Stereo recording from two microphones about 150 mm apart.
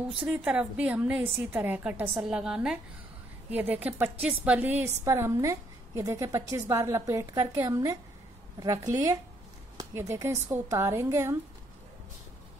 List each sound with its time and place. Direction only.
0.3 s a woman's voice: 5° right (ahead or behind)